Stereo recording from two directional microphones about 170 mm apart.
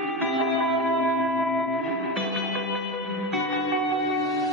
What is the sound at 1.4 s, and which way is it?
Music, centre (ahead or behind).